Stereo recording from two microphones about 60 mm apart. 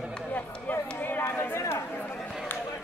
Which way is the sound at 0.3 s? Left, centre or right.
Left.